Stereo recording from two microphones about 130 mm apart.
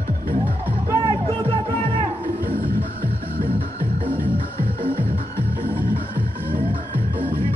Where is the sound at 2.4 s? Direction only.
90° right.